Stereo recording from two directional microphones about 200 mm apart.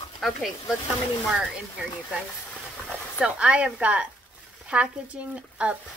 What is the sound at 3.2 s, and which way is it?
A woman's voice, 5° right (ahead or behind).